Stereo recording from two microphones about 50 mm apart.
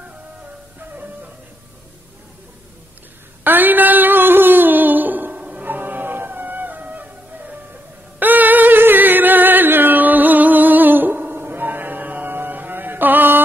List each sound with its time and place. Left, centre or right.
3.4 s a sound: right
5.4 s music: right
5.7 s music: right